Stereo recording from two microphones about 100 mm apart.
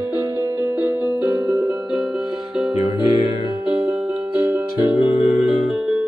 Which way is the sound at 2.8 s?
55° left (ahead or behind).